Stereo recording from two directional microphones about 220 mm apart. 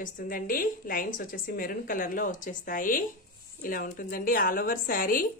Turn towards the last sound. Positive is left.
turn(degrees=40)  # may be behind; listen again after turning